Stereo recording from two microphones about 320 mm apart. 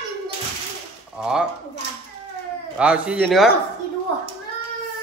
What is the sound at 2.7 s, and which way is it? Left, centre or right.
Speech, centre.